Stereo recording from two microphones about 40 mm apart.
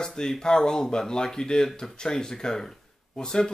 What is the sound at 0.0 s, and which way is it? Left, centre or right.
A man's voice, centre.